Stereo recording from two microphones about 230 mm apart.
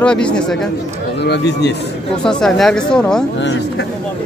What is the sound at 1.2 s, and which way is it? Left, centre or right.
Speech, left.